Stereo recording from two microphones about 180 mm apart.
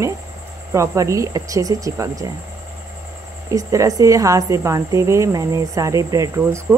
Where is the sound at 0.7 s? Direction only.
15° right (ahead or behind).